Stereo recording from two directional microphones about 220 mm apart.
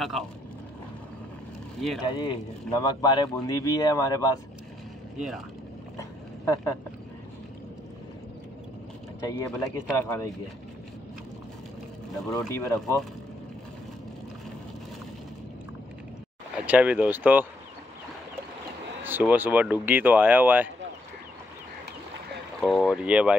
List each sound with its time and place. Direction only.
0.0 s speech: centre (ahead or behind)
2.0 s speech: 20° left (ahead or behind)
5.1 s speech: centre (ahead or behind)
5.9 s a sound: 15° left (ahead or behind)
9.2 s speech: 15° left (ahead or behind)
12.3 s speech: 15° left (ahead or behind)
16.6 s speech: 5° right (ahead or behind)
19.0 s speech: 10° right (ahead or behind)
22.6 s speech: centre (ahead or behind)